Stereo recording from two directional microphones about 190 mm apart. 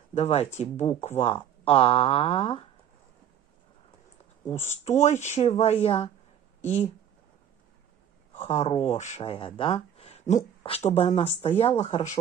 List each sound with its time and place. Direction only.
0.1 s speech: 35° left (ahead or behind)
4.5 s speech: 35° left (ahead or behind)
8.4 s speech: 35° left (ahead or behind)